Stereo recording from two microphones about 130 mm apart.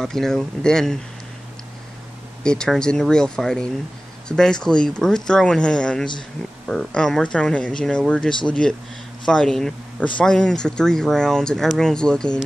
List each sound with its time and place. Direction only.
0.0 s speech: 5° left (ahead or behind)
2.4 s speech: 5° left (ahead or behind)